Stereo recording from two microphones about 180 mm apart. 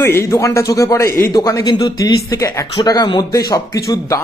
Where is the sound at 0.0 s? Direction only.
15° left (ahead or behind).